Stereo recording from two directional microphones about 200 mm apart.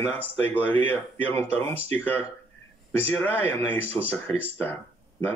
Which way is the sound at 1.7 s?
30° right (ahead or behind).